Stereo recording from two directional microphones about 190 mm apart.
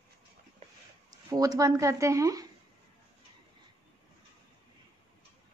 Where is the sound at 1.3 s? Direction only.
20° right (ahead or behind).